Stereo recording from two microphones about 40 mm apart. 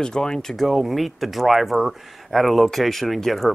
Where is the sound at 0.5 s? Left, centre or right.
Centre.